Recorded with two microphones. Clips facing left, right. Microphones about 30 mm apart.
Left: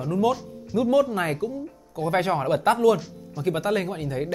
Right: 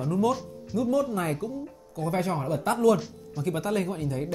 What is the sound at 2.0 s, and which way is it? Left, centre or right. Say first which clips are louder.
Speech: left 5 dB; left.